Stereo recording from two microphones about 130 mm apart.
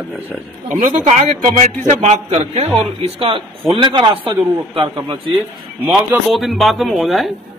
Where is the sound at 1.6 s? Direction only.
55° right (ahead or behind); by 5.2 s 40° right (ahead or behind).